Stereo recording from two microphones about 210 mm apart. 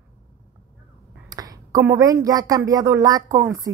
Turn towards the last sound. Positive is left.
turn(degrees=-15)  # may be behind; listen again after turning